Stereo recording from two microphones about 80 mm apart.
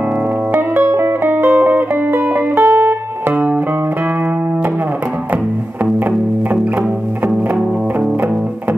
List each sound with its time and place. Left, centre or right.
0.5 s music: centre
5.9 s music: right
7.2 s music: centre